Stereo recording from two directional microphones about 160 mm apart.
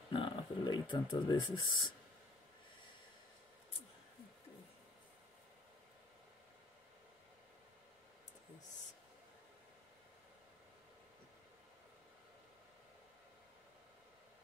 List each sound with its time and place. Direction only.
0.1 s speech: 30° left (ahead or behind)